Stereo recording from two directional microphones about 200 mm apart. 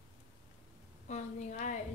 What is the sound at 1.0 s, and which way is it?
Speech, 35° left (ahead or behind).